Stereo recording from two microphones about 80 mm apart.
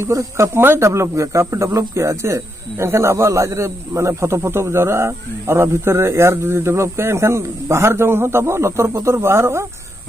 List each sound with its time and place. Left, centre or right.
0.0 s a man's voice: right